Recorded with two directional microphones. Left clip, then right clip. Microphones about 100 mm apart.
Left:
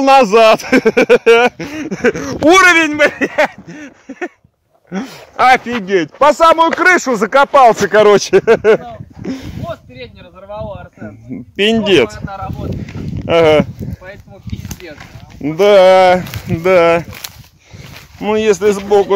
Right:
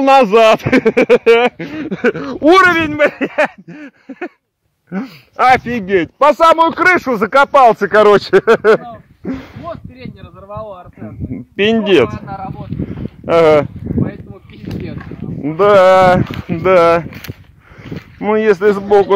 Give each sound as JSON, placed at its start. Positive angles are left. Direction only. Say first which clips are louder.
{"t": 0.0, "sound": "speech", "louder": "left 1 dB", "side_deg": 15}
{"t": 1.9, "sound": "a sound", "louder": "left 1 dB", "side_deg": 10}
{"t": 3.0, "sound": "a sound", "louder": "left 1 dB", "side_deg": 15}
{"t": 6.1, "sound": "speech", "louder": "left 1 dB", "side_deg": 20}
{"t": 6.8, "sound": "speech", "louder": "left 1 dB", "side_deg": 40}
{"t": 7.8, "sound": "speech", "louder": "even", "side_deg": 50}
{"t": 8.3, "sound": "speech", "louder": "even", "side_deg": 35}
{"t": 9.2, "sound": "a sound", "louder": "even", "side_deg": 20}
{"t": 10.5, "sound": "speech", "louder": "left 2 dB", "side_deg": 25}
{"t": 13.3, "sound": "speech", "louder": "even", "side_deg": 20}
{"t": 15.4, "sound": "speech", "louder": "left 1 dB", "side_deg": 55}
{"t": 16.3, "sound": "speech", "louder": "even", "side_deg": 30}
{"t": 18.2, "sound": "speech", "louder": "right 1 dB", "side_deg": 0}